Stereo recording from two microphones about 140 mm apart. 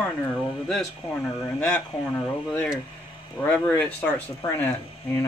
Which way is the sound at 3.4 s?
10° left (ahead or behind).